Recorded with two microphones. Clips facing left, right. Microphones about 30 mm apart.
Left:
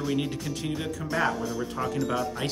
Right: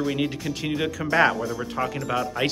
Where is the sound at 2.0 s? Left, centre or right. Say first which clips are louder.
Left 1 dB; centre.